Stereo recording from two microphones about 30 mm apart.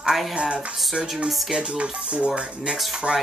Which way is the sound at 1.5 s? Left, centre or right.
Right.